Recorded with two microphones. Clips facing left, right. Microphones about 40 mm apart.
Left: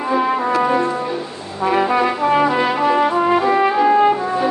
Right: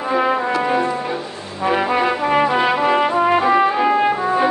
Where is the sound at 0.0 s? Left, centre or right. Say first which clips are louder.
Even; centre.